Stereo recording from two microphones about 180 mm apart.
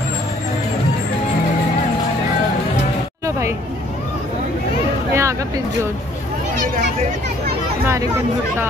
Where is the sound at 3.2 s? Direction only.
15° right (ahead or behind).